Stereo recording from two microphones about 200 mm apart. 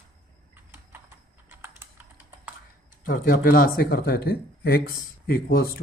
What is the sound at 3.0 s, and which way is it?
A man's voice, 45° left (ahead or behind).